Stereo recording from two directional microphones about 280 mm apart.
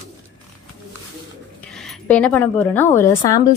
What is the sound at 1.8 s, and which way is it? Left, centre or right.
A woman's voice, centre.